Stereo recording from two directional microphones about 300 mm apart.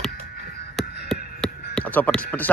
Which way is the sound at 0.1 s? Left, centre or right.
Left.